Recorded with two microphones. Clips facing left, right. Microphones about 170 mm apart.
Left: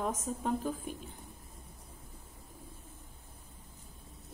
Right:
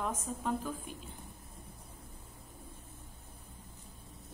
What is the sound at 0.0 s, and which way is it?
Speech, 40° left (ahead or behind).